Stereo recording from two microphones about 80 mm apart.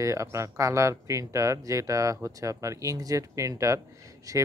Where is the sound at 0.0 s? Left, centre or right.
Right.